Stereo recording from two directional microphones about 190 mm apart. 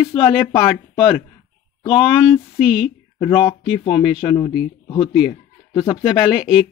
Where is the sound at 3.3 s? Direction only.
30° left (ahead or behind).